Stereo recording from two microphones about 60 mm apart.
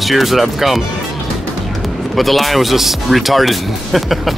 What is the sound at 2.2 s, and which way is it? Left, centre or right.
Speech, centre.